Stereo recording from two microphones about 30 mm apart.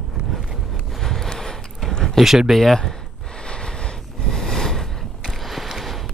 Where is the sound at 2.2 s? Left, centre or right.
Centre.